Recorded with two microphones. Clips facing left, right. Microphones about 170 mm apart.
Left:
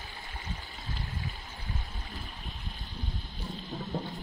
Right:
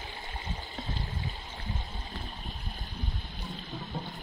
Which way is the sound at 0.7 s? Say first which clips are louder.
Right 5 dB; 20° right (ahead or behind).